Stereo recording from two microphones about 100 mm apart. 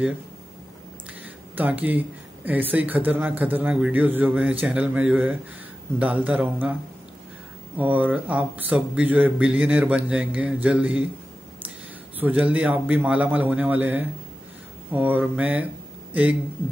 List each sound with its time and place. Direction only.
1.5 s speech: 15° right (ahead or behind)
7.7 s speech: 15° right (ahead or behind)
12.2 s speech: 15° right (ahead or behind)